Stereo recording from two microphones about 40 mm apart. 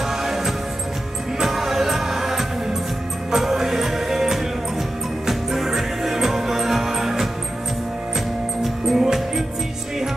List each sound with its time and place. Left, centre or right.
0.2 s music: centre
8.6 s music: centre